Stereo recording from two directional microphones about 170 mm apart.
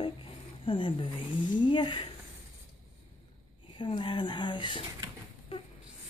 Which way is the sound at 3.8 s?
30° left (ahead or behind).